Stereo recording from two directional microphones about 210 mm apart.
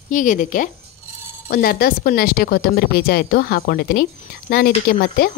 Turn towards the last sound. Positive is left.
turn(degrees=50)  # may be behind; listen again after turning